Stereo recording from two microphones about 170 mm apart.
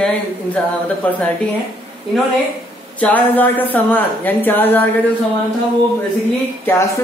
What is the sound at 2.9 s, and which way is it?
Speech, 10° left (ahead or behind).